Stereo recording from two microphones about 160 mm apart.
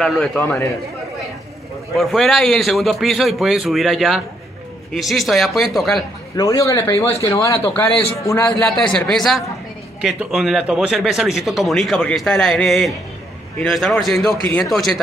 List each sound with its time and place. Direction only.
0.0 s a man's voice: 5° left (ahead or behind)
2.0 s speech: centre (ahead or behind)
6.3 s a man's voice: 20° left (ahead or behind); by 15.0 s centre (ahead or behind)